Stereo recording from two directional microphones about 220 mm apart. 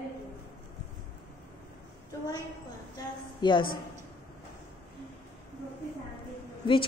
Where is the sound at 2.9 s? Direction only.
20° left (ahead or behind).